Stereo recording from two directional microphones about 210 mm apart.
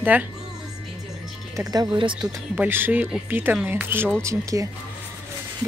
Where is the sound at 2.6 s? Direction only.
10° right (ahead or behind).